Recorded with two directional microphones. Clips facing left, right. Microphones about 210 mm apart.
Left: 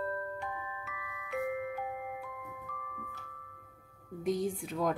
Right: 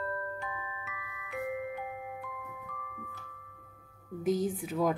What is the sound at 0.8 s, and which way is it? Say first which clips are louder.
Music: left 1 dB; centre (ahead or behind).